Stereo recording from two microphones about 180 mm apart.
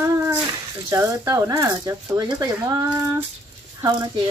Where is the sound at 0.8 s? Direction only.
15° right (ahead or behind).